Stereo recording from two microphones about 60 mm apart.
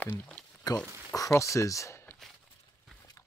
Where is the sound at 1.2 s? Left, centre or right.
Left.